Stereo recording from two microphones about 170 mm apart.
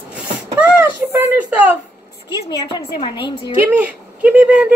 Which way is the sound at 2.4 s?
25° left (ahead or behind).